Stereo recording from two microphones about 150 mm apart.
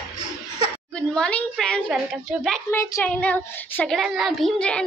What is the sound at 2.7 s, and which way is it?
A child's voice, 20° left (ahead or behind).